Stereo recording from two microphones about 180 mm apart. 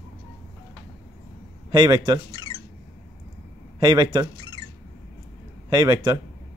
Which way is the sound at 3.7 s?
20° right (ahead or behind).